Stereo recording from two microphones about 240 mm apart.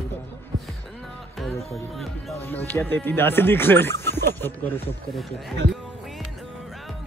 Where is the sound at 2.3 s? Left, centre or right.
Centre.